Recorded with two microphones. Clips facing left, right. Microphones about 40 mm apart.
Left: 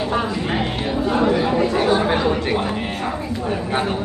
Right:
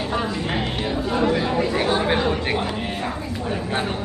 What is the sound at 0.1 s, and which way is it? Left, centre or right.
Chatter, centre.